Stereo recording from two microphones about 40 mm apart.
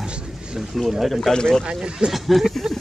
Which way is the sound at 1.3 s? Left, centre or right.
Centre.